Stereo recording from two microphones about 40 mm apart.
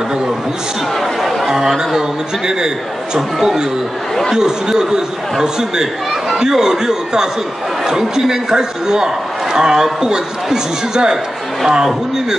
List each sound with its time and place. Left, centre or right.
1.5 s a man's voice: centre